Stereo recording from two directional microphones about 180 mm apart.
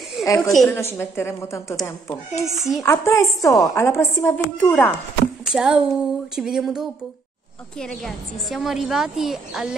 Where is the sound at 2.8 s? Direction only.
15° left (ahead or behind).